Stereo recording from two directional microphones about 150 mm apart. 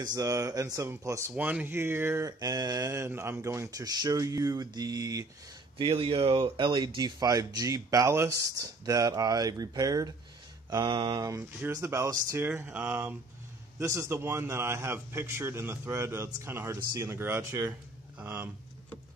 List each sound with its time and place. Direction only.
0.0 s a man's voice: 25° right (ahead or behind)